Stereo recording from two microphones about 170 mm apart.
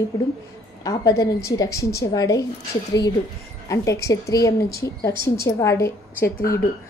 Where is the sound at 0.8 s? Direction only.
20° left (ahead or behind).